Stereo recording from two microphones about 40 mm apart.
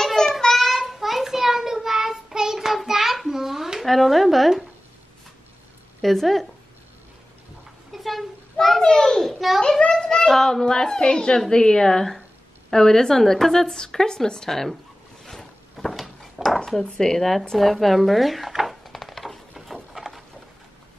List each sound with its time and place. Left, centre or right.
0.0 s child singing: centre
3.8 s speech: centre
5.9 s speech: centre
7.9 s a sound: centre
8.5 s speech: centre
8.8 s a woman's voice: centre
15.2 s a sound: centre
16.4 s speech: centre
17.2 s speech: centre
18.5 s a sound: centre